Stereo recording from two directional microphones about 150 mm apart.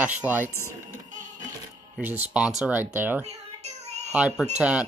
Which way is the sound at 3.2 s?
45° right (ahead or behind).